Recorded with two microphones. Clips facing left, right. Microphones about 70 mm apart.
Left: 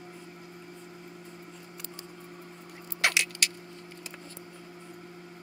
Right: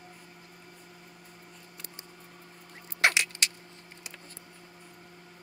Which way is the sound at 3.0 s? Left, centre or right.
Right.